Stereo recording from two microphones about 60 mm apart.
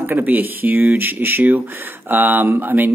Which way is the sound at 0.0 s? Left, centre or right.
Right.